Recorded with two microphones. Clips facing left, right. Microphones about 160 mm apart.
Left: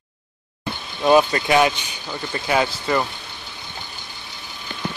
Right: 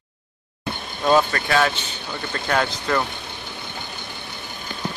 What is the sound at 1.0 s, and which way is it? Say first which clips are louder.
Speech: left 3 dB; 15° left (ahead or behind).